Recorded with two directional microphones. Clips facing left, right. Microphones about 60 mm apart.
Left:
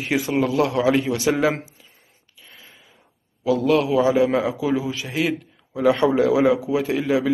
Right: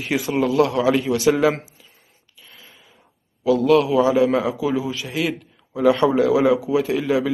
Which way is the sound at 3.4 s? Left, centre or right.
Left.